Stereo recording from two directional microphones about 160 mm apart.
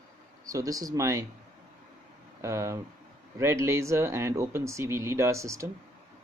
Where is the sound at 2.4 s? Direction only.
15° right (ahead or behind).